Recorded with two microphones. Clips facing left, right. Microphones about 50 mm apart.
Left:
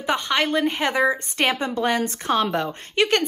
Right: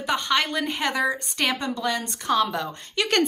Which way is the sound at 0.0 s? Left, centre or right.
Left.